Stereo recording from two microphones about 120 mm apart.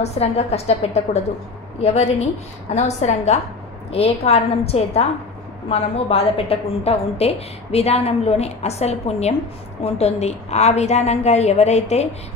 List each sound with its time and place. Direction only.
0.0 s a woman's voice: 60° left (ahead or behind)
3.9 s a woman's voice: 55° left (ahead or behind)